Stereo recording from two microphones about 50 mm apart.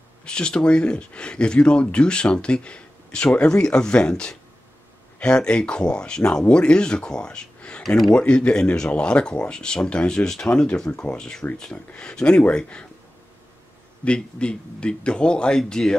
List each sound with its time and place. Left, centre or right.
0.2 s speech: centre
14.0 s speech: centre